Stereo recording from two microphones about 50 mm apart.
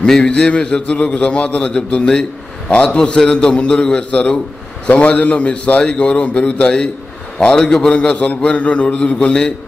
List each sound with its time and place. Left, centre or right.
0.0 s a man's voice: centre